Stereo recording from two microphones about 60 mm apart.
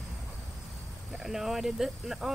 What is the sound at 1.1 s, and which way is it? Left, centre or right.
Speech, centre.